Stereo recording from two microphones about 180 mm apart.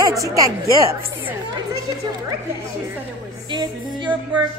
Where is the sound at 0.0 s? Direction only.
20° right (ahead or behind).